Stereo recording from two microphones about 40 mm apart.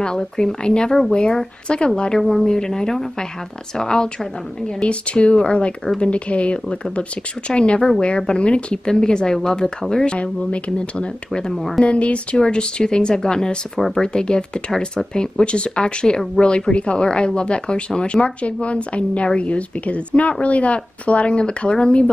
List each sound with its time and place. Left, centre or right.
0.0 s speech: centre
4.7 s speech: left
10.1 s speech: left
11.5 s speech: centre
11.8 s speech: left